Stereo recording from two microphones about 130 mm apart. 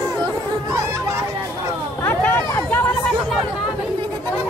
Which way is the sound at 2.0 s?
15° left (ahead or behind).